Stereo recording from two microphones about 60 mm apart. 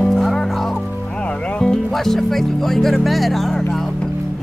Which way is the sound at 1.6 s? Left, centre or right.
Centre.